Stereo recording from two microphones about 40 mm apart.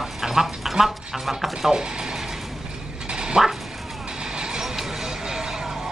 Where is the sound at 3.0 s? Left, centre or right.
Right.